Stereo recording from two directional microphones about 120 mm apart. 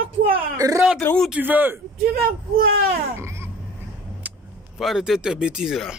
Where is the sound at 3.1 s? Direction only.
20° right (ahead or behind).